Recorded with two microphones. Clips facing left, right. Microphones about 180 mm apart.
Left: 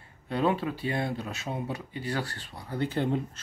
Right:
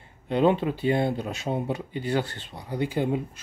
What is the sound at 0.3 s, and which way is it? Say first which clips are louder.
Speech: right 5 dB; 25° right (ahead or behind).